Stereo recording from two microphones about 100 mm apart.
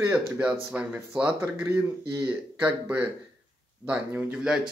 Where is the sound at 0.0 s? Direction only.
15° right (ahead or behind).